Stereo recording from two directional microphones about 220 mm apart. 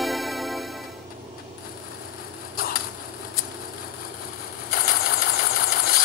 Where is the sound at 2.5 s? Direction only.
40° left (ahead or behind).